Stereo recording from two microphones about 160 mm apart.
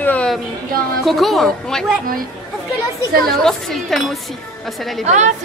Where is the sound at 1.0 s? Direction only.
Centre (ahead or behind).